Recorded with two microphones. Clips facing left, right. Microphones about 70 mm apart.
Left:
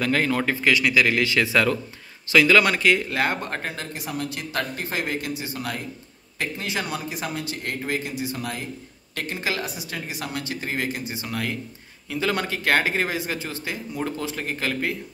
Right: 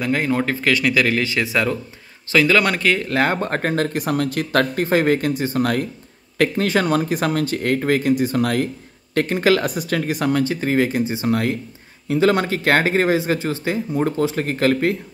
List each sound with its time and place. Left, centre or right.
0.0 s speech: right
0.5 s speech: right
1.2 s speech: right
2.3 s speech: right
9.1 s speech: right
10.4 s speech: right
11.2 s speech: right
14.3 s speech: right